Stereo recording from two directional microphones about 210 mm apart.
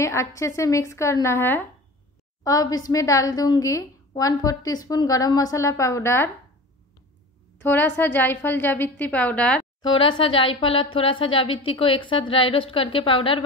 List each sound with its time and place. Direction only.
0.0 s a woman's voice: 15° left (ahead or behind)
8.0 s a woman's voice: 10° left (ahead or behind)
9.8 s speech: 25° left (ahead or behind)